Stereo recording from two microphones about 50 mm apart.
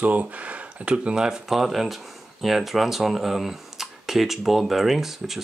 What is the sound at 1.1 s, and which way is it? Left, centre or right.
Speech, centre.